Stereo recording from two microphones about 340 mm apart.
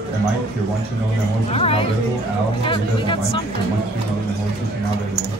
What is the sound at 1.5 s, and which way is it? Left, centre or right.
Speech, centre.